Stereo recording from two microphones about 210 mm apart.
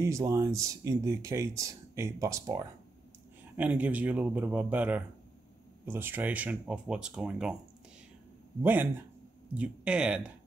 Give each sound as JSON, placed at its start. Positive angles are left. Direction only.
{"t": 0.0, "sound": "speech", "side_deg": -15}
{"t": 9.5, "sound": "speech", "side_deg": -5}